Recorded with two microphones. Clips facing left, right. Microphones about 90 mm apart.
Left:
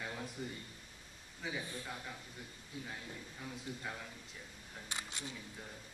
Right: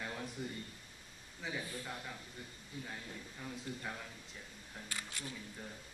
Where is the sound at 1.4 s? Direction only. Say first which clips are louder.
Even; centre (ahead or behind).